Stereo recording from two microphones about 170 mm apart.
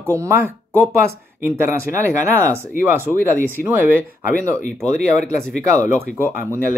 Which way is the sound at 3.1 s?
5° right (ahead or behind).